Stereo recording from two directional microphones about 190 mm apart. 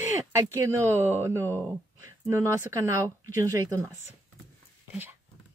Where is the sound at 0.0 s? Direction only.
15° right (ahead or behind).